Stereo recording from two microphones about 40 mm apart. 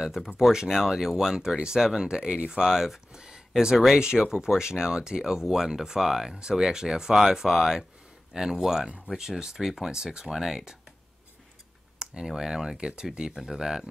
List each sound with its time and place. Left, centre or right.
0.0 s speech: centre
9.8 s speech: centre
10.2 s speech: centre
12.0 s speech: centre